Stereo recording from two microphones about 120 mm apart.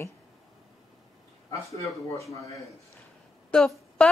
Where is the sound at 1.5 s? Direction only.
25° left (ahead or behind).